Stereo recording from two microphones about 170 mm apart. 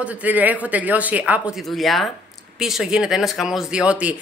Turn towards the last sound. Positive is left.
turn(degrees=-5)  # may be behind; listen again after turning